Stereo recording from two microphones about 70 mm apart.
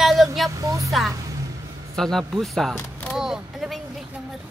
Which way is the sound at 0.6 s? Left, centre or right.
Right.